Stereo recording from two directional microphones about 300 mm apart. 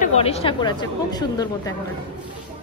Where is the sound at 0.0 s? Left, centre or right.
Left.